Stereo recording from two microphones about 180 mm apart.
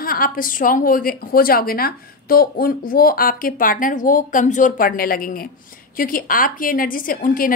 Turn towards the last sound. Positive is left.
turn(degrees=50)  # may be behind; listen again after turning